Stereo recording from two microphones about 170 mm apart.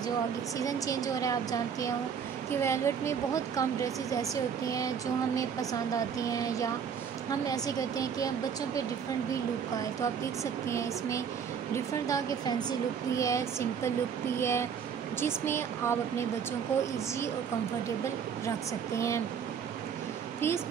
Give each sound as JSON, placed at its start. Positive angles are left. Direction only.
{"t": 0.6, "sound": "speech", "side_deg": 20}
{"t": 10.4, "sound": "speech", "side_deg": 15}
{"t": 18.9, "sound": "speech", "side_deg": 15}
{"t": 20.3, "sound": "speech", "side_deg": 15}